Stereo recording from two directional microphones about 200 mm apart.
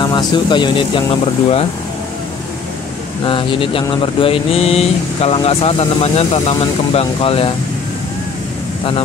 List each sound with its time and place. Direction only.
0.0 s speech: 20° left (ahead or behind)
3.3 s speech: 25° left (ahead or behind)